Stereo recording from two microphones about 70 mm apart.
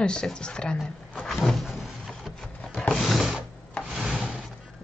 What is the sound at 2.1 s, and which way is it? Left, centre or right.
Wood, centre.